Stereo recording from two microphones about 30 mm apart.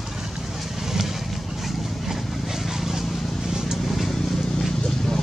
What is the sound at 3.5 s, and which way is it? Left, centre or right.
Vehicle, centre.